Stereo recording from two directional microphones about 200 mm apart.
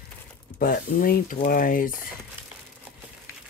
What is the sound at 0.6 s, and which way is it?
Speech, 45° left (ahead or behind).